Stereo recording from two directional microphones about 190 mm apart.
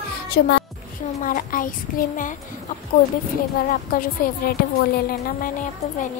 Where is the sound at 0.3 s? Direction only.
60° left (ahead or behind).